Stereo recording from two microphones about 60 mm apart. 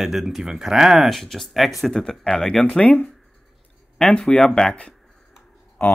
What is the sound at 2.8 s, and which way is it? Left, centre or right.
Speech, left.